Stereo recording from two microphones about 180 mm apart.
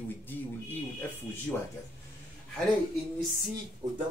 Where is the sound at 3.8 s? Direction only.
20° right (ahead or behind).